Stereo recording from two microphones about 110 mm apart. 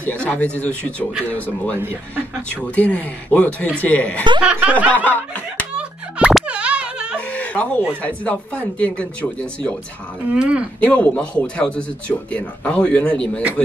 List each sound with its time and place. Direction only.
0.0 s speech: 10° left (ahead or behind)
1.8 s speech: 20° right (ahead or behind)
2.5 s speech: 15° left (ahead or behind)
4.4 s snicker: 10° right (ahead or behind)
4.9 s snicker: 15° left (ahead or behind)
5.8 s a sound: 10° right (ahead or behind)
6.4 s plop: 10° right (ahead or behind)
7.2 s chicken: 15° left (ahead or behind)
8.0 s speech: 10° left (ahead or behind)
10.3 s snicker: 10° right (ahead or behind)
10.8 s speech: 10° left (ahead or behind)